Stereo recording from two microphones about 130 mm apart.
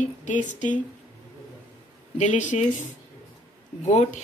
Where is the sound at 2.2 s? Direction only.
70° left (ahead or behind).